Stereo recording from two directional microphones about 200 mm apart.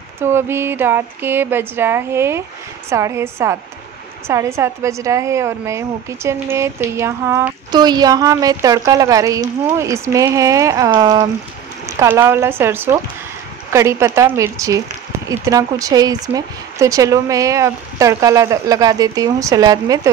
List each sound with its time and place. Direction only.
0.2 s a woman's voice: 10° right (ahead or behind)